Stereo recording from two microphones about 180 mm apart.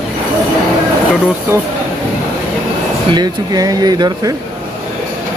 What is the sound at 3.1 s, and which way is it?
Speech, 20° right (ahead or behind).